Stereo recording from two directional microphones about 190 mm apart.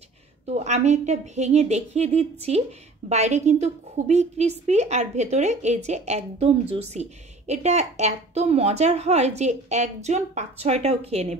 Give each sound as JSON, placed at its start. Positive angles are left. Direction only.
{"t": 0.5, "sound": "a woman's voice", "side_deg": -35}